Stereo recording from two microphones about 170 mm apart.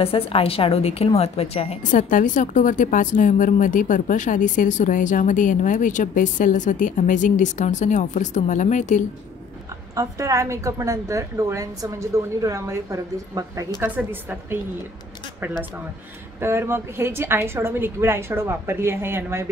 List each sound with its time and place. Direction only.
0.0 s a woman's voice: 35° left (ahead or behind)
9.9 s a woman's voice: 20° right (ahead or behind)
13.7 s a woman's voice: 10° right (ahead or behind)